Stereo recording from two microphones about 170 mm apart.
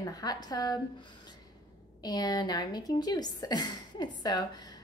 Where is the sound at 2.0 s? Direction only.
25° left (ahead or behind).